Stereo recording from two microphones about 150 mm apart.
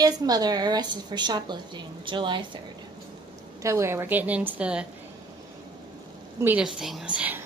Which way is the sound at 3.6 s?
20° right (ahead or behind).